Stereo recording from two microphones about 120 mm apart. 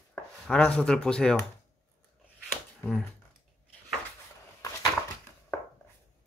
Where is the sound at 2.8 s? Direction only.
20° left (ahead or behind).